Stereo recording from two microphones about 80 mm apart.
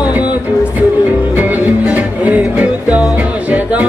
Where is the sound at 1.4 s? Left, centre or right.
Centre.